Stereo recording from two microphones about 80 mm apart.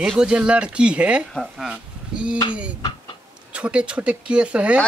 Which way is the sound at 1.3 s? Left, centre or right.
Centre.